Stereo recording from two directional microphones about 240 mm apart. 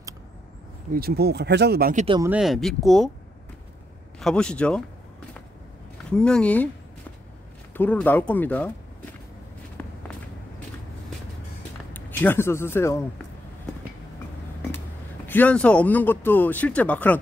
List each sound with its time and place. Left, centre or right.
0.9 s speech: right
2.2 s speech: centre
4.2 s speech: centre
6.0 s speech: centre
7.7 s speech: centre
9.8 s walk: centre
11.9 s speech: centre
15.2 s speech: centre